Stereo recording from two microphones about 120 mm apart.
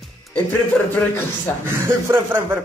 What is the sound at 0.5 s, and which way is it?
Speech, 20° left (ahead or behind).